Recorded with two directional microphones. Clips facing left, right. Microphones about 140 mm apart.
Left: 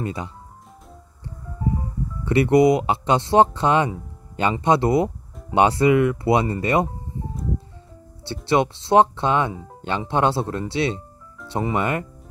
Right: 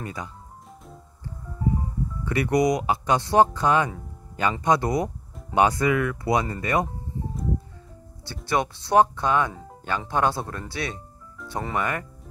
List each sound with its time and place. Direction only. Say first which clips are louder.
0.0 s speech: left 6 dB; 25° left (ahead or behind)
2.2 s speech: left 6 dB; 25° left (ahead or behind)
8.3 s speech: left 5 dB; 25° left (ahead or behind)